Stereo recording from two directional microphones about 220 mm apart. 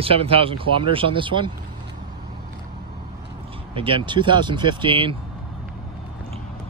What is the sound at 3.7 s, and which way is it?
Speech, 25° right (ahead or behind).